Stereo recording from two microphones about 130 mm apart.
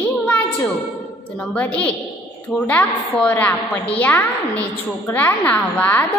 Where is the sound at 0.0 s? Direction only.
10° left (ahead or behind).